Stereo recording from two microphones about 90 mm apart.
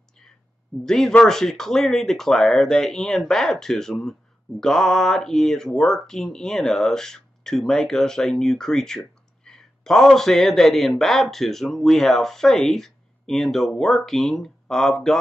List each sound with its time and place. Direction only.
0.8 s speech: 5° left (ahead or behind)